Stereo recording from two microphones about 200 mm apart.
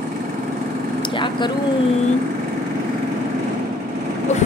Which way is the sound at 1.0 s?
25° left (ahead or behind).